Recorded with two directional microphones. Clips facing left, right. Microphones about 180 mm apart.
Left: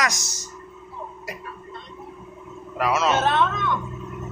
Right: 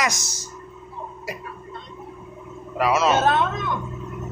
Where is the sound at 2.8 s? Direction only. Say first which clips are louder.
Right 2 dB; 5° right (ahead or behind).